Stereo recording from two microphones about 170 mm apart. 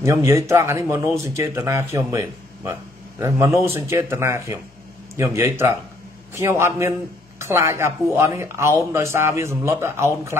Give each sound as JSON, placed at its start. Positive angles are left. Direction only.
{"t": 0.0, "sound": "speech", "side_deg": -15}